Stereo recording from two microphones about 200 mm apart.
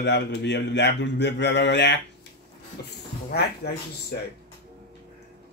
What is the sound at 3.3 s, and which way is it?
Speech, 55° left (ahead or behind).